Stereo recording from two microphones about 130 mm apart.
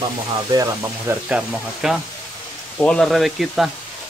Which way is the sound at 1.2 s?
5° right (ahead or behind).